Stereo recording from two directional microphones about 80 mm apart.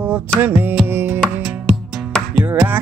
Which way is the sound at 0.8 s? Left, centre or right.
Right.